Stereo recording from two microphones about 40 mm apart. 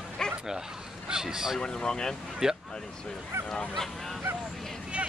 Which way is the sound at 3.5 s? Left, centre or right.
Centre.